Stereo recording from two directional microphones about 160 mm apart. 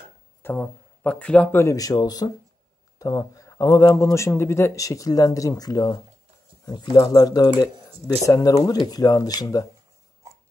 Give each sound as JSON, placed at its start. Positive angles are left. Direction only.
{"t": 0.4, "sound": "speech", "side_deg": 10}